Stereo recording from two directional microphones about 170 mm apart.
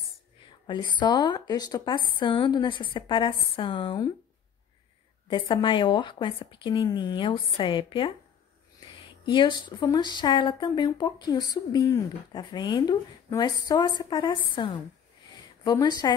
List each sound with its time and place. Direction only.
0.7 s speech: 30° left (ahead or behind)
5.5 s speech: 30° left (ahead or behind)